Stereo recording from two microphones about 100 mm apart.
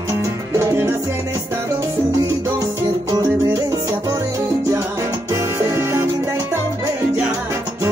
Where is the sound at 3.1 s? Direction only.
35° right (ahead or behind).